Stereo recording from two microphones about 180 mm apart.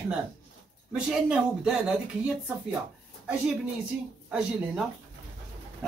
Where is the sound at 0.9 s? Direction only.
5° right (ahead or behind).